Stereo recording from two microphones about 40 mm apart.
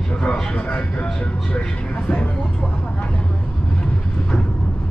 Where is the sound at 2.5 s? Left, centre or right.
Left.